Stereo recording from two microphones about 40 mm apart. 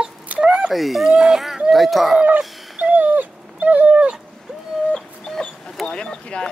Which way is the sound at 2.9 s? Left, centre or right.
Right.